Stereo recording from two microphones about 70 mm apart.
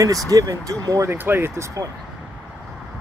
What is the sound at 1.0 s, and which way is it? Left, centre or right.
Speech, right.